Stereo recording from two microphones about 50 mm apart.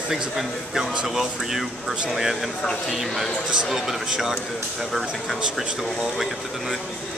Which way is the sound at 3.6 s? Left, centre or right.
Centre.